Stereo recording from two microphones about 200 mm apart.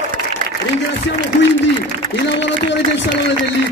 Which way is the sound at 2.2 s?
65° left (ahead or behind).